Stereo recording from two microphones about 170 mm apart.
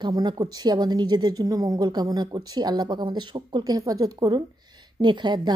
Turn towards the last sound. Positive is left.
turn(degrees=-25)  # may be behind; listen again after turning